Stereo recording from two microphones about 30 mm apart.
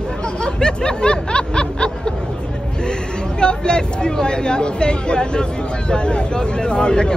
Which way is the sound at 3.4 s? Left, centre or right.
Left.